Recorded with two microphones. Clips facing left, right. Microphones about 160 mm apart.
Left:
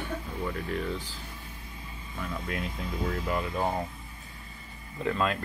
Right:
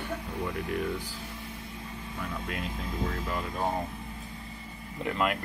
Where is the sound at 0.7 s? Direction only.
15° right (ahead or behind).